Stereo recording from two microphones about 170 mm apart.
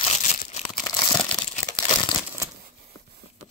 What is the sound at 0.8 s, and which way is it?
Crumpling, 20° left (ahead or behind).